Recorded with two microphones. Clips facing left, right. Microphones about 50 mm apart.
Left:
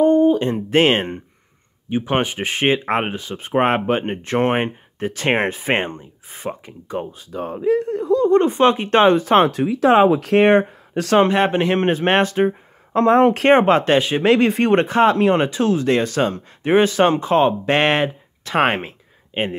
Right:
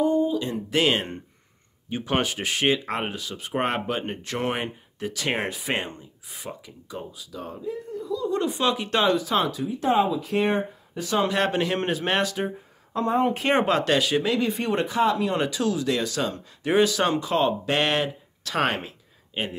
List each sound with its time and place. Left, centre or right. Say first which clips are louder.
0.0 s a sound: left 8 dB; left
1.9 s speech: left 5 dB; left
7.6 s speech: left 15 dB; left
9.7 s speech: left 8 dB; left
11.2 s speech: left 6 dB; left
13.0 s speech: left 9 dB; left
13.5 s speech: left 6 dB; left
14.2 s speech: left 9 dB; left